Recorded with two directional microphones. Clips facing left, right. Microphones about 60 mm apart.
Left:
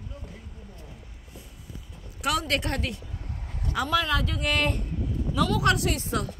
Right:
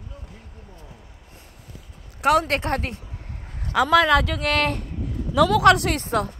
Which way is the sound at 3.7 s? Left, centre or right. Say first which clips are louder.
Right 9 dB; right.